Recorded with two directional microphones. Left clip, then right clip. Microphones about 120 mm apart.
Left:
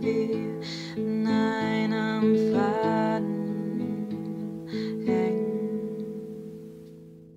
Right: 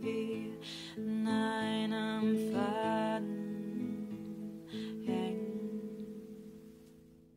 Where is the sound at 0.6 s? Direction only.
30° left (ahead or behind).